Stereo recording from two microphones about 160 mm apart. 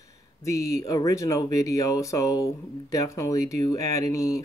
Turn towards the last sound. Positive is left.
turn(degrees=20)  # may be behind; listen again after turning